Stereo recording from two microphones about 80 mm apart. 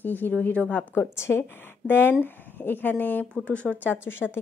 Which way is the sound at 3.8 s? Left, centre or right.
Left.